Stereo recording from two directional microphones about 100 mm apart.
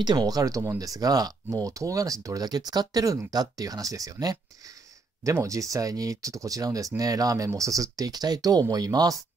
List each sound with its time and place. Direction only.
0.0 s speech: 45° right (ahead or behind)